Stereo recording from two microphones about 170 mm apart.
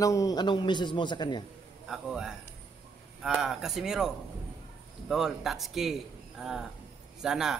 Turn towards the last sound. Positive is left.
turn(degrees=-5)  # may be behind; listen again after turning